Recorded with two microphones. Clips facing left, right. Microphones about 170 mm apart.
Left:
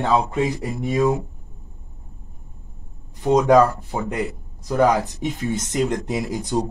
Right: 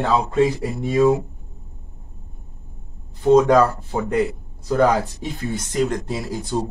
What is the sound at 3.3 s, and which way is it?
Speech, 15° left (ahead or behind).